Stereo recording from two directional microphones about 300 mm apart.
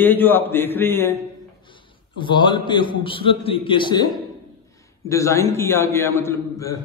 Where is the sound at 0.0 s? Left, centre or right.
Centre.